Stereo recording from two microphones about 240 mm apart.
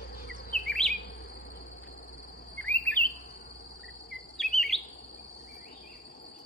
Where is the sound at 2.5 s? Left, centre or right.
Centre.